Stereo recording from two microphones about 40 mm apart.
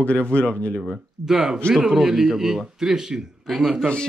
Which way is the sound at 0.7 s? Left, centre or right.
Centre.